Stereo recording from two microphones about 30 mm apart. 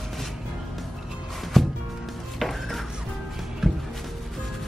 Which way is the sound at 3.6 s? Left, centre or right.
Centre.